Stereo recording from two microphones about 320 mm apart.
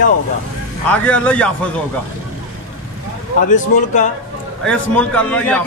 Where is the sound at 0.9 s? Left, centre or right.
Centre.